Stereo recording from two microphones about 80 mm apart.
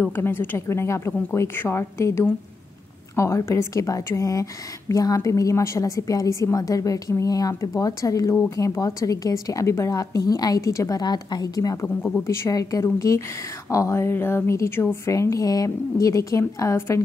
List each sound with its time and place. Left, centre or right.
0.0 s a woman's voice: left
11.0 s a woman's voice: left
11.8 s speech: left
12.4 s a woman's voice: left